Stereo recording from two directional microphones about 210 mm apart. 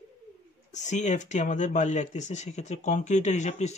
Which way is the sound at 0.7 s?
35° left (ahead or behind).